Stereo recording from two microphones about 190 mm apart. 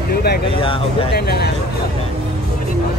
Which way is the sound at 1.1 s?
60° left (ahead or behind).